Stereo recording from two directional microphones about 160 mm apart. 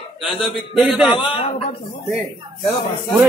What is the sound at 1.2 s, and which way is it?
Speech, 35° left (ahead or behind).